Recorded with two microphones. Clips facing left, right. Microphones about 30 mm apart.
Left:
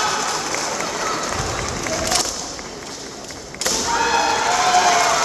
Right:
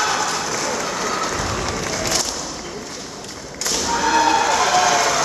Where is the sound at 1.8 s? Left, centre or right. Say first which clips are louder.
Left 1 dB; centre.